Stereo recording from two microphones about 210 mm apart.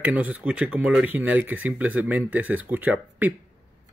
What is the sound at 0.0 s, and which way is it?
Speech, 5° right (ahead or behind).